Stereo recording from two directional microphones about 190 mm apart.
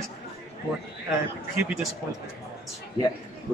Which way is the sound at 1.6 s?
5° right (ahead or behind).